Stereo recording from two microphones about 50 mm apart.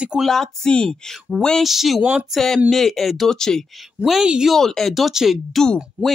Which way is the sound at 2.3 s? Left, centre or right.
Centre.